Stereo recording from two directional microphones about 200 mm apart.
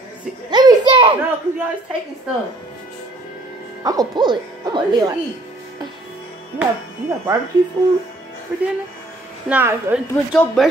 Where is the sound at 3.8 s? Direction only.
20° right (ahead or behind).